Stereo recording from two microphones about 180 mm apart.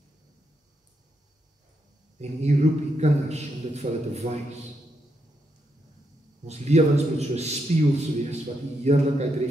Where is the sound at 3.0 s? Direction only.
40° right (ahead or behind).